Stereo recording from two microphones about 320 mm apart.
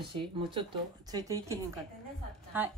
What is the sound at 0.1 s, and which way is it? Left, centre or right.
Speech, centre.